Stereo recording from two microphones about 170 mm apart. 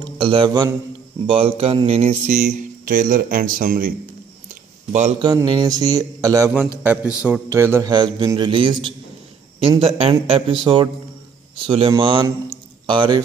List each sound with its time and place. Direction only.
0.2 s a man's voice: 30° right (ahead or behind)
1.2 s speech: 35° right (ahead or behind); by 3.9 s 55° right (ahead or behind)
5.2 s a man's voice: 25° right (ahead or behind)
7.9 s a man's voice: 25° right (ahead or behind)